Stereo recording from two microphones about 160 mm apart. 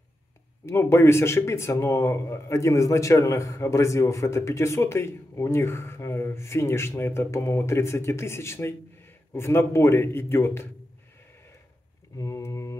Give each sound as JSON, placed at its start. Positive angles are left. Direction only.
{"t": 0.7, "sound": "a man's voice", "side_deg": 15}
{"t": 12.2, "sound": "mantra", "side_deg": 20}